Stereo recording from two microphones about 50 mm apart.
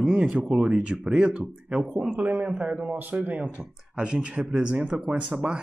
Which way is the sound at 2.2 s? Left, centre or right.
Right.